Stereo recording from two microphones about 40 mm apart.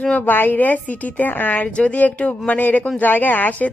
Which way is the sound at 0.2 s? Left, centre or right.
Left.